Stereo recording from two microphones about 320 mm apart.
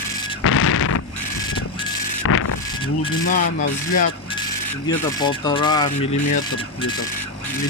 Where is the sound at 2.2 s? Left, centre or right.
Left.